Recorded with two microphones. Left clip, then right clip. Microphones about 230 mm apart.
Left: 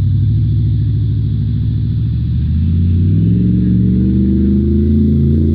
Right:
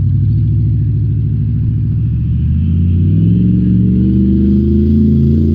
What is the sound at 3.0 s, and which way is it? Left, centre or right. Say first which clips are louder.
Gong: right 2 dB; right.